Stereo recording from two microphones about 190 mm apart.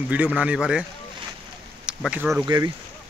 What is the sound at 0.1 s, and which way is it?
Speech, 5° right (ahead or behind).